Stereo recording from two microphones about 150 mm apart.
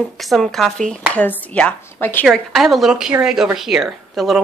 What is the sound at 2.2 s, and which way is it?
A woman's voice, centre (ahead or behind).